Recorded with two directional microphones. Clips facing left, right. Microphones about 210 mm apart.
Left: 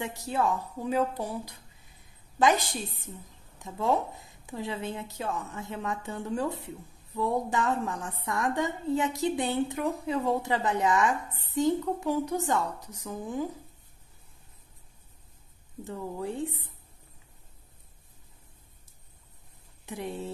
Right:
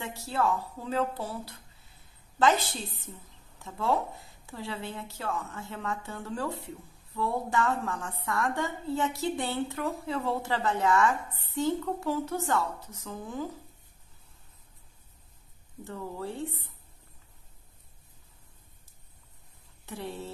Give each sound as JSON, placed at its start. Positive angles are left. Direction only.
{"t": 0.0, "sound": "a woman's voice", "side_deg": 15}
{"t": 15.8, "sound": "a woman's voice", "side_deg": 15}
{"t": 19.9, "sound": "a woman's voice", "side_deg": 15}